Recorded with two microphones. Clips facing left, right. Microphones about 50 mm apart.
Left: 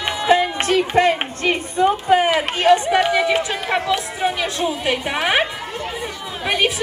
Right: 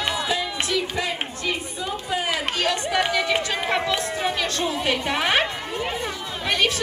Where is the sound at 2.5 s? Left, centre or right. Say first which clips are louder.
Left 9 dB; left.